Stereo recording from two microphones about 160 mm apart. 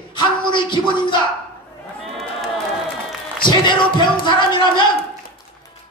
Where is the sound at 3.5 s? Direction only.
30° left (ahead or behind).